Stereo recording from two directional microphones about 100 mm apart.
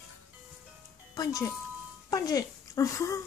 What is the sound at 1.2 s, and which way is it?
Speech, 35° left (ahead or behind).